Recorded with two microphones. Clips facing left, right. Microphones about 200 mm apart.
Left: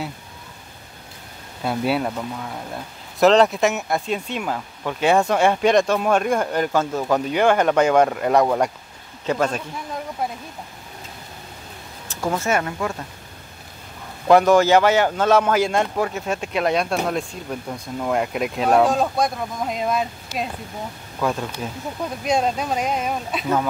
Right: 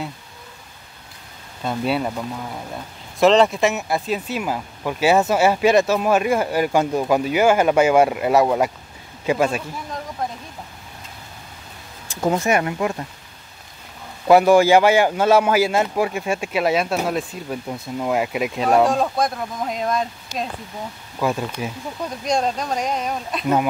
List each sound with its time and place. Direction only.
1.6 s a man's voice: 5° left (ahead or behind)
12.1 s speech: 15° right (ahead or behind)
14.2 s a man's voice: 10° right (ahead or behind)
21.2 s speech: 5° right (ahead or behind)
22.2 s a man's voice: 5° left (ahead or behind)